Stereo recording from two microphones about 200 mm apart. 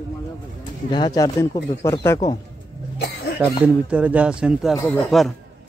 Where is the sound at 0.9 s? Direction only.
20° left (ahead or behind).